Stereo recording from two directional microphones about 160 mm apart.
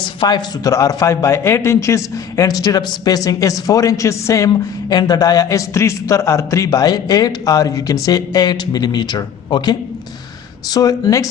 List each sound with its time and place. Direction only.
0.2 s a man's voice: 25° left (ahead or behind)